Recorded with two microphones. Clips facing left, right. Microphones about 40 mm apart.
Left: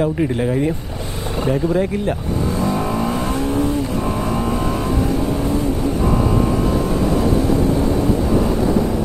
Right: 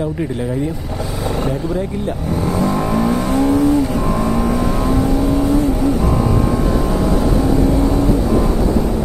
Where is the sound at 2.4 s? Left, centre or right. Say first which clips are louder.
Right 5 dB; right.